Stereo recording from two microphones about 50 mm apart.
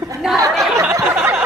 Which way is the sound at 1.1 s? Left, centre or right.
Right.